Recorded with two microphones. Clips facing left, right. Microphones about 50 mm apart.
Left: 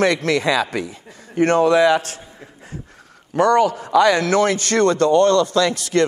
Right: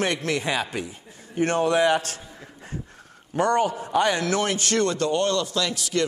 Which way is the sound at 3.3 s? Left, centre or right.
Left.